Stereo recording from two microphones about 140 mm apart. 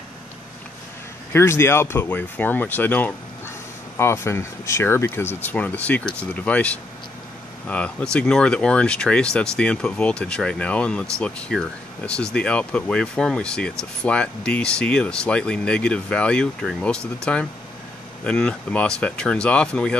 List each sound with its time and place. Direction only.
1.3 s speech: 20° left (ahead or behind)